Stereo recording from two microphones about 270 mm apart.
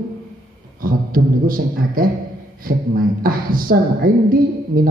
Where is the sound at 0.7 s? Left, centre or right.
Right.